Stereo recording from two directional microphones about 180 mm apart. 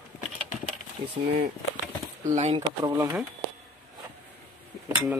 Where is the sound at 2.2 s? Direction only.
40° right (ahead or behind).